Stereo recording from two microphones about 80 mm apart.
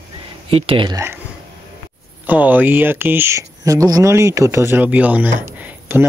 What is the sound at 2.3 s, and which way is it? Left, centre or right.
Speech, right.